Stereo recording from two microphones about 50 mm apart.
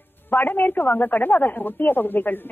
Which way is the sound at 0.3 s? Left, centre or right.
Left.